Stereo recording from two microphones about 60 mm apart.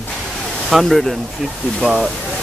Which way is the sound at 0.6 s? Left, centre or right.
Centre.